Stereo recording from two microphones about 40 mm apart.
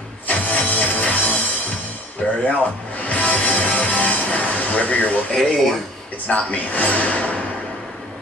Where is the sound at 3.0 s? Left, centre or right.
Left.